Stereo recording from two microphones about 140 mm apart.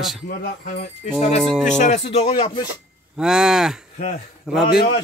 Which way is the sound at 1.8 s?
50° left (ahead or behind).